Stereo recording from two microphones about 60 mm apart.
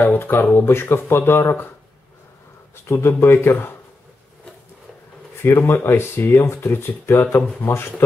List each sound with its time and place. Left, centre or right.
0.0 s speech: left
2.7 s speech: left
5.4 s speech: left